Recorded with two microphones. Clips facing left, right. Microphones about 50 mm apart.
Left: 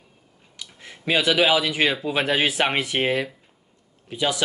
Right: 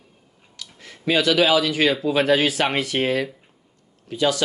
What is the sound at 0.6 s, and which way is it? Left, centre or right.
Speech, left.